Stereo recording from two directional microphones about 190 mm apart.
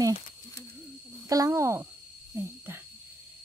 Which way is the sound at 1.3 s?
15° right (ahead or behind).